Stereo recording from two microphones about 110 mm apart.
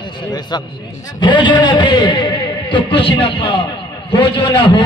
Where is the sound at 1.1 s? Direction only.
45° left (ahead or behind).